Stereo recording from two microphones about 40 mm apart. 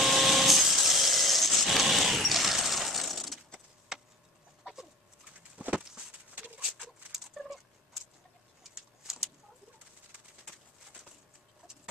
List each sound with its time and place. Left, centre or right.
0.0 s wood: centre
5.7 s a sound: right
7.4 s cat: centre
8.7 s bird: centre